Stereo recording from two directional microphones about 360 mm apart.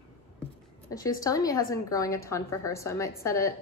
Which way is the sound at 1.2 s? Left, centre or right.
Centre.